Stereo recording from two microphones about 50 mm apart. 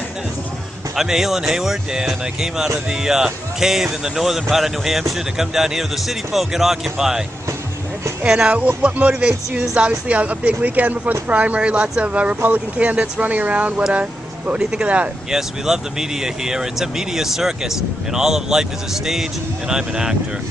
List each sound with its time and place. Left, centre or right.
0.9 s speech: centre
8.5 s a woman's voice: right
15.3 s speech: centre